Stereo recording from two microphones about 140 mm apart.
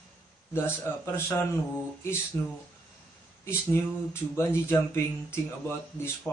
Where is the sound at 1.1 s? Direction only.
15° left (ahead or behind).